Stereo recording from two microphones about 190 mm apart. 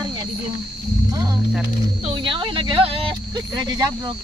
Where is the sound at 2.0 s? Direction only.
25° right (ahead or behind).